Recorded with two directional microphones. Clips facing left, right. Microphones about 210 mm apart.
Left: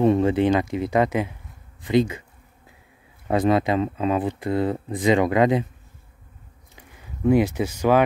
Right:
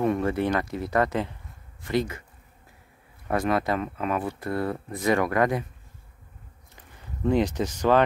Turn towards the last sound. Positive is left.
turn(degrees=10)  # may be behind; listen again after turning